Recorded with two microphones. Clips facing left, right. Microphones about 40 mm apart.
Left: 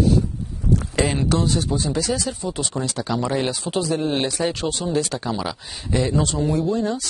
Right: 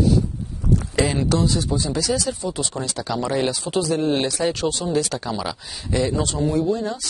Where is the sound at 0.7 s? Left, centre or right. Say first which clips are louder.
Even; left.